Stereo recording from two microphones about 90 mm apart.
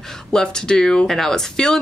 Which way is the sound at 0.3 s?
5° left (ahead or behind).